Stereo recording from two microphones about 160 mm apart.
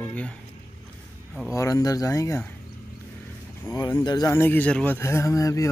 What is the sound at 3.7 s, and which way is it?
Speech, 20° left (ahead or behind).